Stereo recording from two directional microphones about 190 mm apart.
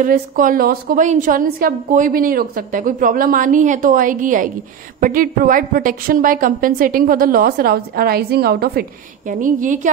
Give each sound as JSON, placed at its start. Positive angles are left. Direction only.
{"t": 0.0, "sound": "a woman's voice", "side_deg": -45}
{"t": 9.3, "sound": "a woman's voice", "side_deg": -45}